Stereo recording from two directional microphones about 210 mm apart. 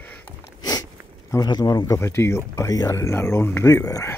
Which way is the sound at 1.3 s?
20° left (ahead or behind).